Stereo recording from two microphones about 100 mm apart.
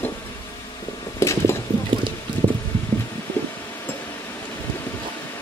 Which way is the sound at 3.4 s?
20° left (ahead or behind).